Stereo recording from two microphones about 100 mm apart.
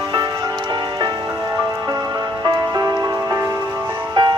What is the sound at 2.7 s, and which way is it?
Music, 35° right (ahead or behind).